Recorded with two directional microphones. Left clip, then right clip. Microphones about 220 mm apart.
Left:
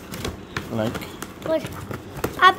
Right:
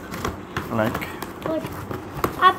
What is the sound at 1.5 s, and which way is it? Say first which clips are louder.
Horse: left 5 dB; 40° left (ahead or behind).